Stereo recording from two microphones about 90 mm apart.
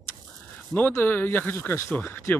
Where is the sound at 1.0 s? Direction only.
25° left (ahead or behind).